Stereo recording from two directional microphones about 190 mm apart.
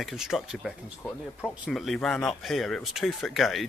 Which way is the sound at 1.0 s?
10° left (ahead or behind).